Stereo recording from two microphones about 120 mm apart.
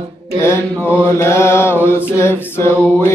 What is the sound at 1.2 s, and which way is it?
Mantra, 20° left (ahead or behind).